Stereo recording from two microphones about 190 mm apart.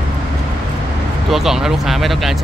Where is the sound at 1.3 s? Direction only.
Centre (ahead or behind).